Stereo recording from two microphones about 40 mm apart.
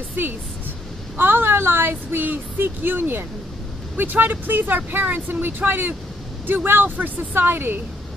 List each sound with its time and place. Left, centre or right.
1.1 s speech: right